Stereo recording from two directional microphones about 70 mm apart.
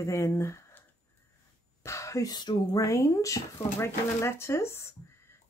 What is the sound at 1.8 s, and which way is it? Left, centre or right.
Whispering, left.